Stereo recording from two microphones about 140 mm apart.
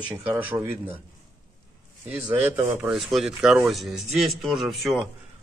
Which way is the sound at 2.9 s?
Centre (ahead or behind).